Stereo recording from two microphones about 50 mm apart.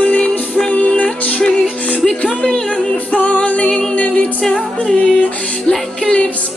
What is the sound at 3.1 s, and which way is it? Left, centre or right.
Music, left.